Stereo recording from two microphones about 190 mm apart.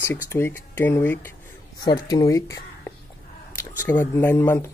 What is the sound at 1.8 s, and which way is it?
Speech, 20° left (ahead or behind).